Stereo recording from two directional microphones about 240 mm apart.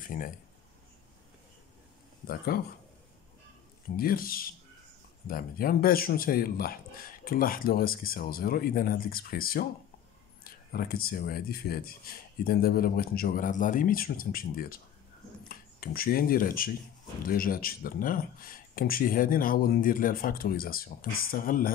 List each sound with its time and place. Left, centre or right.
0.0 s speech: left
2.2 s speech: left
3.9 s speech: left